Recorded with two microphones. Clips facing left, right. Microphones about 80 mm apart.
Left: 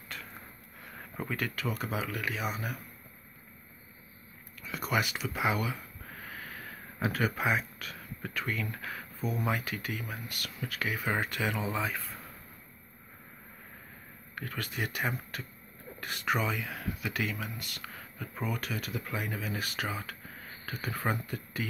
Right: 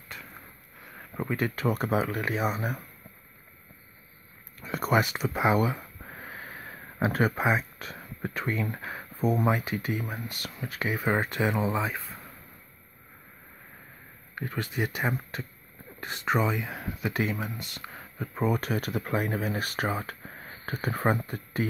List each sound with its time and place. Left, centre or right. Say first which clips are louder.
0.1 s a sound: right 1 dB; centre
1.5 s speech: right 8 dB; right
4.6 s a sound: right 6 dB; right
9.2 s speech: right 8 dB; right
9.5 s speech: right 6 dB; right
14.3 s speech: right 5 dB; right